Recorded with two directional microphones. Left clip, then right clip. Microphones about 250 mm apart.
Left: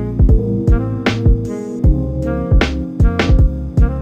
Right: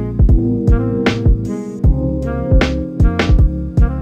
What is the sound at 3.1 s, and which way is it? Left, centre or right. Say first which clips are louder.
Music: left 1 dB; right.